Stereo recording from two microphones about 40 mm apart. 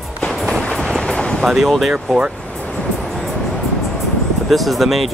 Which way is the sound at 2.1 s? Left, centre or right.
Centre.